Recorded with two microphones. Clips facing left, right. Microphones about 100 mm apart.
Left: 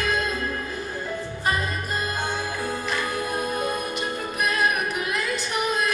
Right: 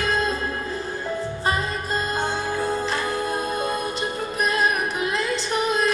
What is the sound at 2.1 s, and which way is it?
Music, 30° right (ahead or behind).